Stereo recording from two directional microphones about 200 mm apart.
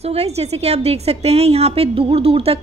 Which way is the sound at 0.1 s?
30° right (ahead or behind).